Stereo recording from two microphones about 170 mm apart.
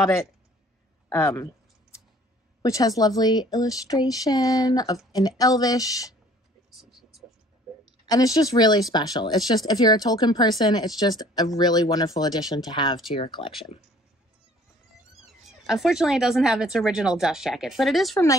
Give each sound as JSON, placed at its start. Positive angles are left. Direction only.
{"t": 1.0, "sound": "a sound", "side_deg": 15}
{"t": 2.6, "sound": "speech", "side_deg": 20}
{"t": 8.1, "sound": "speech", "side_deg": 20}
{"t": 15.6, "sound": "speech", "side_deg": 0}